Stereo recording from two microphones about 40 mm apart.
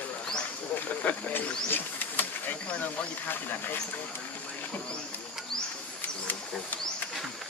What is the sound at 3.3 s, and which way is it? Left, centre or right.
Speech, left.